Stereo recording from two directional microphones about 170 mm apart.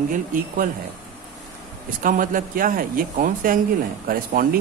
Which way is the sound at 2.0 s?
55° right (ahead or behind).